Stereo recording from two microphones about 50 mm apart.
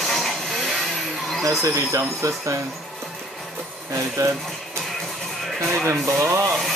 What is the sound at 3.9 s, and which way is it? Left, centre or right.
Speech, right.